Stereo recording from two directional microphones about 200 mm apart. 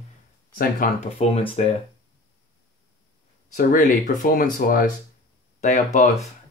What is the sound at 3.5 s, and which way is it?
Speech, 40° left (ahead or behind).